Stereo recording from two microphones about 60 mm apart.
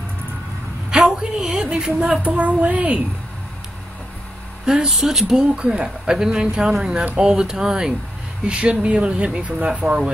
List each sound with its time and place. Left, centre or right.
0.8 s a sound: centre
2.2 s speech: right
4.6 s speech: centre
9.8 s speech: centre